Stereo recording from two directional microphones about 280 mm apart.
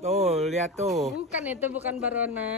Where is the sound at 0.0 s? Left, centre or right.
Right.